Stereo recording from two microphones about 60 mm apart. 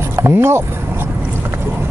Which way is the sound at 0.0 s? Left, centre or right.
Right.